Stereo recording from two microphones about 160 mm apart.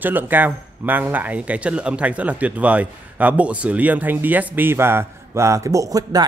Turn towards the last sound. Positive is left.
turn(degrees=-20)  # may be behind; listen again after turning